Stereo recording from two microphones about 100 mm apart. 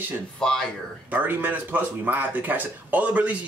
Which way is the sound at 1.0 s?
15° right (ahead or behind).